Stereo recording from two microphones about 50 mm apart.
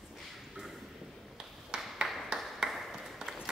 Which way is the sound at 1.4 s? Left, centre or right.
Centre.